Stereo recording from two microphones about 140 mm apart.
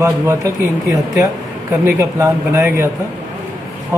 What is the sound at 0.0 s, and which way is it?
Speech, 20° right (ahead or behind).